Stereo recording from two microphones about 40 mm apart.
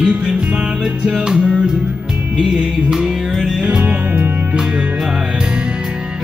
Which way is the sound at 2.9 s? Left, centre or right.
Centre.